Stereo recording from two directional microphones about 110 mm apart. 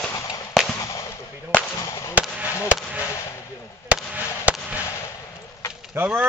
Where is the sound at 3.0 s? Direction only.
30° left (ahead or behind).